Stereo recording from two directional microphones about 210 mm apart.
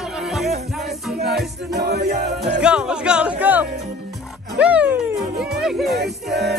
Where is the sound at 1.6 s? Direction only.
50° right (ahead or behind).